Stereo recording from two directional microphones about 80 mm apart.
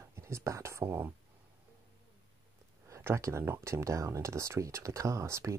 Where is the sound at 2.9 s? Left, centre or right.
Right.